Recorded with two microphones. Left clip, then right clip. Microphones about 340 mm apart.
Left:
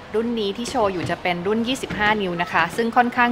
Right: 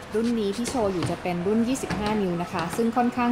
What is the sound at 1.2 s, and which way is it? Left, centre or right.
A woman's voice, left.